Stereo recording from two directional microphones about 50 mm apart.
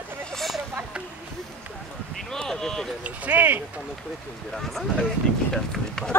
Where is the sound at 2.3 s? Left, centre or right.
Centre.